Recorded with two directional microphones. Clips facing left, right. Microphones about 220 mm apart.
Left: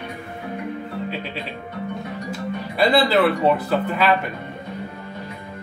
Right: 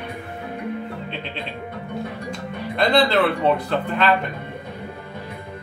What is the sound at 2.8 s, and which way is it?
Speech, 5° left (ahead or behind).